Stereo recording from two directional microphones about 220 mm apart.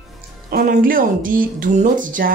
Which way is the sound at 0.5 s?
40° right (ahead or behind).